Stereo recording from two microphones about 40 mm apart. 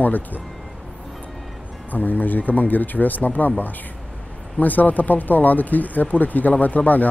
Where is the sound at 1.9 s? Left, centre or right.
Left.